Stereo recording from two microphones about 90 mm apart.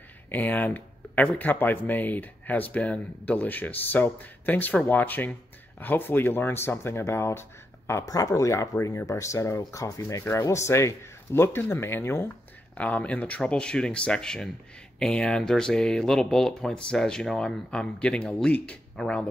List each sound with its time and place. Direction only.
0.3 s speech: 20° left (ahead or behind)
8.0 s speech: 40° left (ahead or behind)
12.7 s speech: 15° left (ahead or behind)